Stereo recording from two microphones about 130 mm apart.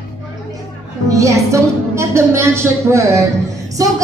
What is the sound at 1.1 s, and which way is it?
A woman's voice, 25° right (ahead or behind).